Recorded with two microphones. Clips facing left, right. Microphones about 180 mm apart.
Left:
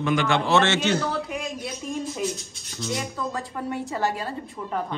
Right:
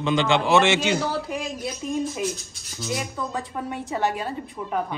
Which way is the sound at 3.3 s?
20° right (ahead or behind).